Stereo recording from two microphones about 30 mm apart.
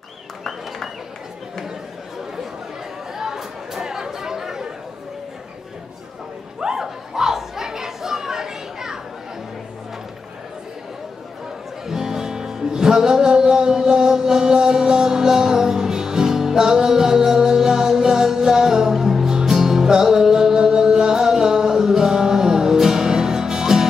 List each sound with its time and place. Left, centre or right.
3.2 s chatter: centre
6.6 s chatter: centre
11.8 s music: centre